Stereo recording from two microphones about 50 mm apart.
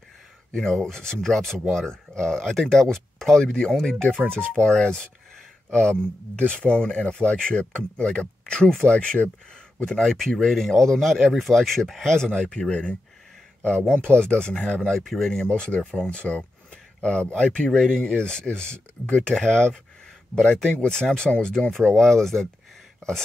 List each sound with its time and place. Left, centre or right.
0.5 s speech: centre
12.4 s speech: centre
15.0 s speech: centre
15.4 s speech: centre
20.8 s speech: centre